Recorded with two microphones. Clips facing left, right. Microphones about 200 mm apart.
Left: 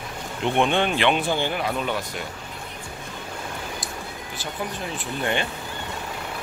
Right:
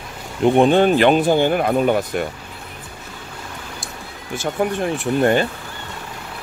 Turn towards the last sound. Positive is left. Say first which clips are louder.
# right 9 dB
turn(degrees=-40)  # may be behind; listen again after turning